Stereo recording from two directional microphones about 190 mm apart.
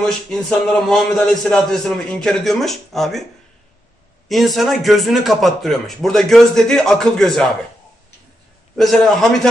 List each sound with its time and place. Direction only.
0.0 s a man's voice: centre (ahead or behind)
4.3 s a man's voice: centre (ahead or behind)
8.7 s a man's voice: centre (ahead or behind)